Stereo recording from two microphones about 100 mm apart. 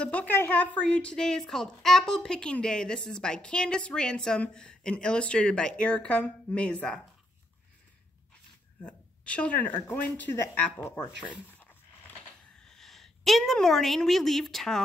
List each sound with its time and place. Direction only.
0.0 s a woman's voice: 15° left (ahead or behind)
8.8 s a woman's voice: 10° left (ahead or behind)
12.5 s a woman's voice: 5° left (ahead or behind)